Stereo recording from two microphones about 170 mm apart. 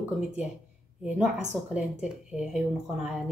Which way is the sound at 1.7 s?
5° right (ahead or behind).